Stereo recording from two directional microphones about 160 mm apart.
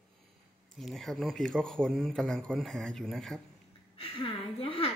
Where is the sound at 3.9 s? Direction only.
35° left (ahead or behind).